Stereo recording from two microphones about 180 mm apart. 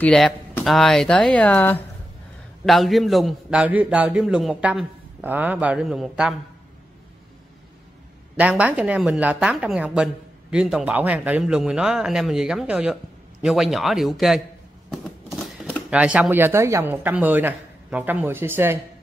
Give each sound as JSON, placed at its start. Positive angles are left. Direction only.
{"t": 0.0, "sound": "speech", "side_deg": 5}
{"t": 8.4, "sound": "a woman's voice", "side_deg": -10}